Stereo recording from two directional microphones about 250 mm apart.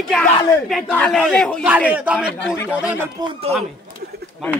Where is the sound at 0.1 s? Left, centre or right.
Centre.